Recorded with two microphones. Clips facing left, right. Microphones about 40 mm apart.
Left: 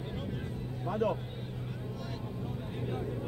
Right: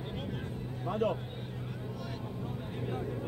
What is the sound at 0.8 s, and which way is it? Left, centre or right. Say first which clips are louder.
Speech: even; right.